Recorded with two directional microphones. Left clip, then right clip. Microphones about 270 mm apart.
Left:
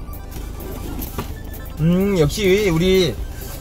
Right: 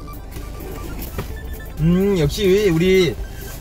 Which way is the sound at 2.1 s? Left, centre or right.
Centre.